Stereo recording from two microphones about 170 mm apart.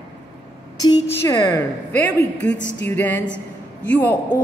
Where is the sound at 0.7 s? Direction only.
25° left (ahead or behind).